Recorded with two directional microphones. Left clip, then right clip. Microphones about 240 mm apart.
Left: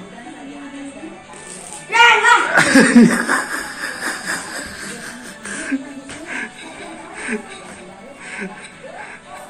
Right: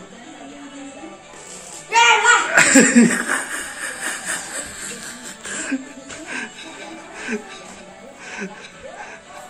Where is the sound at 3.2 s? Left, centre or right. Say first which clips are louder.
Left 4 dB; centre.